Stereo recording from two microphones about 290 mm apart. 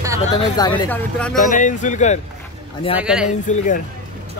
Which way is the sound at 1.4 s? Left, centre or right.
Left.